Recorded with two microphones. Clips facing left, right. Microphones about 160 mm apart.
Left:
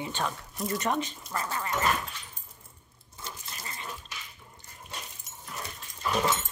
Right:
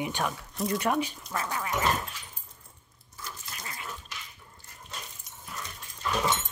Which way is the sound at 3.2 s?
25° left (ahead or behind).